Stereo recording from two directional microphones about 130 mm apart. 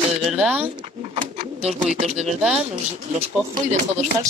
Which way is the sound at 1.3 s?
50° right (ahead or behind).